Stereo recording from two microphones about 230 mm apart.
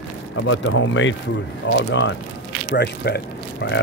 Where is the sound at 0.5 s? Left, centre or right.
Left.